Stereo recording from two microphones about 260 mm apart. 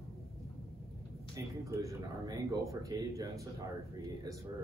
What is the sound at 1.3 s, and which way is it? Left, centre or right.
Speech, centre.